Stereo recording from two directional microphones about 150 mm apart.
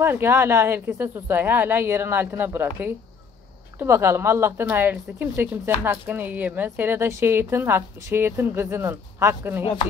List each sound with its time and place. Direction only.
0.0 s speech: 15° right (ahead or behind)